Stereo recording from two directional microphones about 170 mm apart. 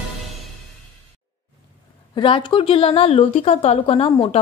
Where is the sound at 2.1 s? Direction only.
30° left (ahead or behind).